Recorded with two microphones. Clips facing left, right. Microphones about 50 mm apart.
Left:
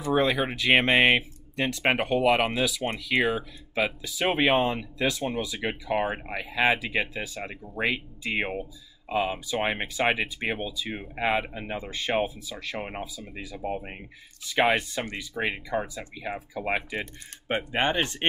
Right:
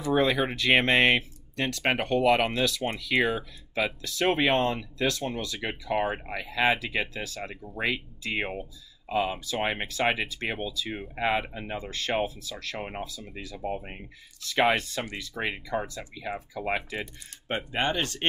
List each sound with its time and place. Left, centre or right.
0.1 s speech: centre; by 18.2 s left